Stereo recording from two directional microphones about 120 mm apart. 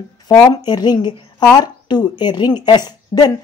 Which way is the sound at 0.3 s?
30° left (ahead or behind).